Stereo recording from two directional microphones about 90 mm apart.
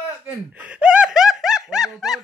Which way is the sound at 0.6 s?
15° right (ahead or behind).